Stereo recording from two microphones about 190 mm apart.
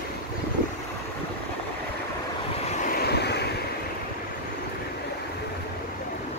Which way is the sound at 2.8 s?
55° left (ahead or behind).